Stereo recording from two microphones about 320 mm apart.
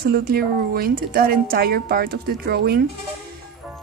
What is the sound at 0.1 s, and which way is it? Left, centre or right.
A woman's voice, right.